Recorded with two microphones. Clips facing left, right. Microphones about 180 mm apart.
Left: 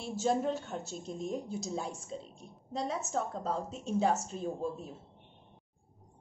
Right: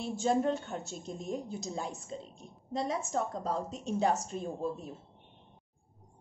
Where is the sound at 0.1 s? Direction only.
5° left (ahead or behind).